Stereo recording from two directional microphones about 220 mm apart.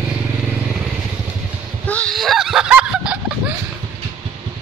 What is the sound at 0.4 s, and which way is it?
Vehicle, 5° right (ahead or behind).